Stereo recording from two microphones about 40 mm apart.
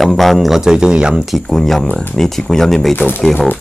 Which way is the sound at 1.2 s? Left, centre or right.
Centre.